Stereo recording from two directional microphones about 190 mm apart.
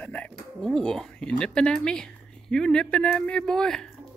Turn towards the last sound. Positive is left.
turn(degrees=5)  # may be behind; listen again after turning